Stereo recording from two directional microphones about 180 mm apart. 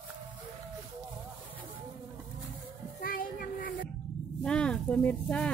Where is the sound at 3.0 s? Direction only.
50° left (ahead or behind).